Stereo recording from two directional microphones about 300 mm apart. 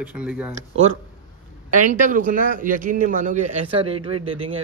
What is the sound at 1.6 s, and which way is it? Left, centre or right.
A man's voice, right.